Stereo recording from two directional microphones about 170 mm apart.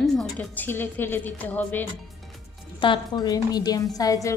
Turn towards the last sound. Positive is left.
turn(degrees=20)  # may be behind; listen again after turning